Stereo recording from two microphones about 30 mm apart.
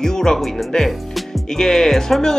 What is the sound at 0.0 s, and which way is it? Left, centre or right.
Music, centre.